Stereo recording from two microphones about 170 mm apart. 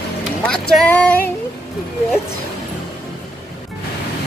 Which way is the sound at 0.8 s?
5° left (ahead or behind).